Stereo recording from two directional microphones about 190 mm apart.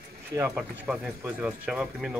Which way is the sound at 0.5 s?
5° right (ahead or behind).